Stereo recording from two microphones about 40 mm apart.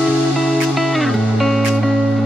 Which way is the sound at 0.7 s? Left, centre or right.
Centre.